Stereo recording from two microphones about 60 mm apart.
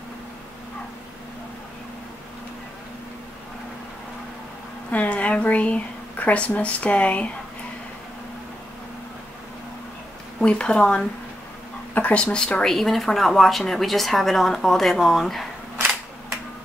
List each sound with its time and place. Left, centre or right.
4.9 s speech: left
10.4 s speech: centre
11.9 s speech: left
12.2 s speech: centre